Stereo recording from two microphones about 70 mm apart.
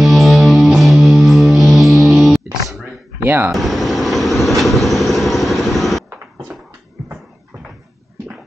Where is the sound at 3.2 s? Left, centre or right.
Right.